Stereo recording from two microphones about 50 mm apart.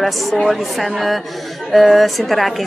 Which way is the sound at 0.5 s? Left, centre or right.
Centre.